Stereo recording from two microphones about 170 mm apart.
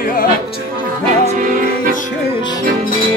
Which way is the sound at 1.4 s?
50° right (ahead or behind).